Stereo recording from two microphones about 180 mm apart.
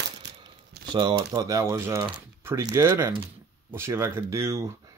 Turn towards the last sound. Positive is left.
turn(degrees=-15)  # may be behind; listen again after turning